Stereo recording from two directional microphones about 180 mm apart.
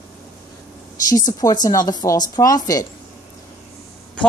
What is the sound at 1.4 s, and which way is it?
A woman's voice, 20° left (ahead or behind).